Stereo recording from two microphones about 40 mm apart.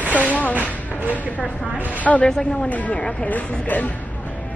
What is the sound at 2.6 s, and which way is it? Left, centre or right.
Speech, left.